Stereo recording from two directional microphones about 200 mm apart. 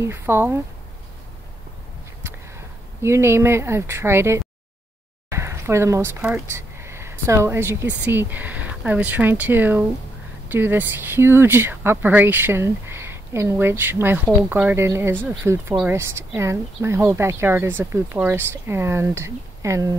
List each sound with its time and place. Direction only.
0.0 s speech: 10° right (ahead or behind)
2.2 s speech: 15° right (ahead or behind)